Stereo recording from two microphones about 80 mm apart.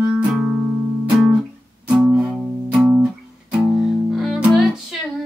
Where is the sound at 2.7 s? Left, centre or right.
Centre.